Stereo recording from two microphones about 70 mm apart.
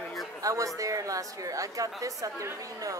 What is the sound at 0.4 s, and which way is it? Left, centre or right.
A woman's voice, right.